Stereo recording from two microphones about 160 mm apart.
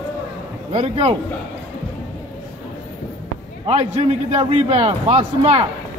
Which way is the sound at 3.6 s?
40° right (ahead or behind).